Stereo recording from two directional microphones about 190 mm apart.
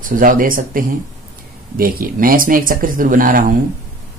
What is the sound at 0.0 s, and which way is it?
Speech, 45° right (ahead or behind).